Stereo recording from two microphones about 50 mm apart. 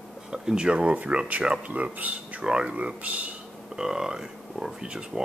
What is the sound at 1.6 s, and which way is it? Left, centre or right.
Speech, right.